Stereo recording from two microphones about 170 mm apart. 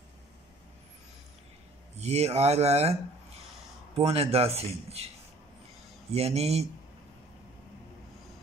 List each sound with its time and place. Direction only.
2.0 s speech: 40° right (ahead or behind)
6.1 s speech: 35° right (ahead or behind)